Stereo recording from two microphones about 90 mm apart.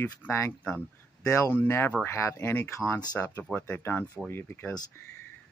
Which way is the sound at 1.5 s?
25° left (ahead or behind).